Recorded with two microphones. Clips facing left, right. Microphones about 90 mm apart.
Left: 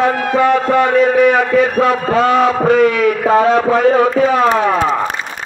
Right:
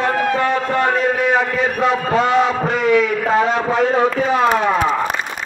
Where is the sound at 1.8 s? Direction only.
45° left (ahead or behind).